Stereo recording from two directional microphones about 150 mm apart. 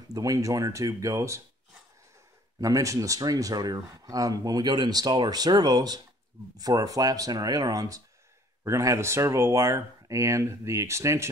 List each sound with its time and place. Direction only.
0.1 s speech: 25° right (ahead or behind)
2.6 s speech: 20° right (ahead or behind)